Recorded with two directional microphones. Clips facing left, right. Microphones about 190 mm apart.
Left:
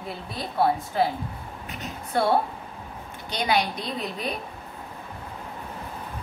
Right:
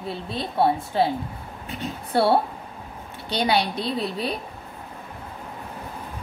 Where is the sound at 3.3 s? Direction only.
30° right (ahead or behind).